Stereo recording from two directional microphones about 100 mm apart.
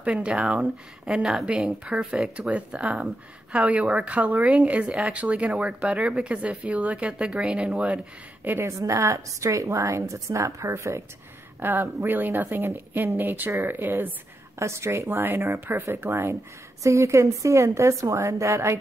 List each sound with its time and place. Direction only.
0.0 s speech: 10° right (ahead or behind)
8.5 s a woman's voice: 25° right (ahead or behind)